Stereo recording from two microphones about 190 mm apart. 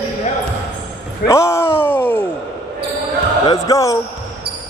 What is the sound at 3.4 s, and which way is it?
Speech, 20° left (ahead or behind).